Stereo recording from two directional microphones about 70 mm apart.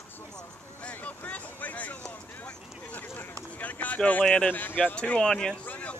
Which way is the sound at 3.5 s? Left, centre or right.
Left.